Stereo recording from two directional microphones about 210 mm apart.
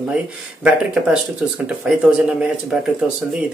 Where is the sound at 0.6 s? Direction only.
5° right (ahead or behind).